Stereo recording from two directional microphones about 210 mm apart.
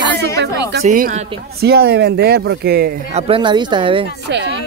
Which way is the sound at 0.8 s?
35° right (ahead or behind).